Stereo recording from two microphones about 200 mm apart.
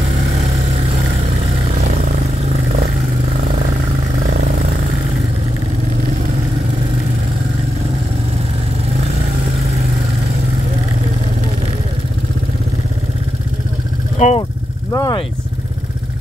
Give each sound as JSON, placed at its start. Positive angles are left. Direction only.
{"t": 14.1, "sound": "vehicle", "side_deg": 35}
{"t": 14.9, "sound": "vehicle", "side_deg": 15}